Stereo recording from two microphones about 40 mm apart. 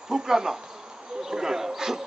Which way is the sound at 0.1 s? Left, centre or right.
Centre.